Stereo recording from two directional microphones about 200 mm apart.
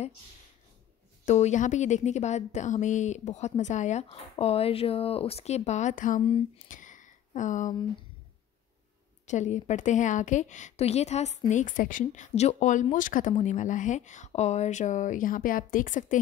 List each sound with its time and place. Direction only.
1.2 s a woman's voice: 35° left (ahead or behind)
9.2 s a woman's voice: 35° left (ahead or behind)